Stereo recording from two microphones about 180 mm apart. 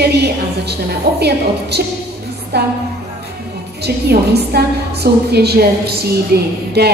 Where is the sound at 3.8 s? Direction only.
65° right (ahead or behind).